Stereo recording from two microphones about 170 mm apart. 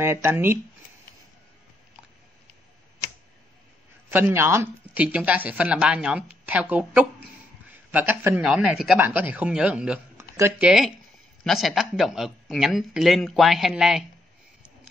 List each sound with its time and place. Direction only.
0.0 s speech: 15° right (ahead or behind)
4.1 s a man's voice: 15° right (ahead or behind)